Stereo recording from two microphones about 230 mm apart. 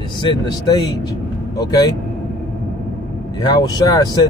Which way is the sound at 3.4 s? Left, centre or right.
Centre.